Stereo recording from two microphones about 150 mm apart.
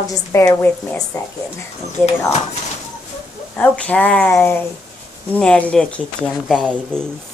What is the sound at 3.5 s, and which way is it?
Speech, 10° left (ahead or behind).